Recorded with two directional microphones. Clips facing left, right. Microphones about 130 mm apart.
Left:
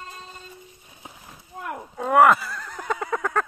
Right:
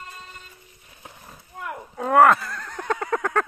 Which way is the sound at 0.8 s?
20° left (ahead or behind).